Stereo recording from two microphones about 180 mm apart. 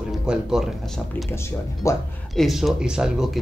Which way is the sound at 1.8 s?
15° left (ahead or behind).